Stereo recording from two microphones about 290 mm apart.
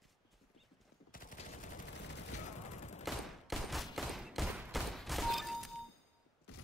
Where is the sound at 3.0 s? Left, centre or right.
Centre.